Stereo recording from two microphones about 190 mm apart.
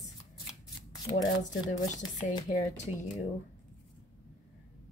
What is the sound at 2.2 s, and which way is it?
Speech, 40° left (ahead or behind).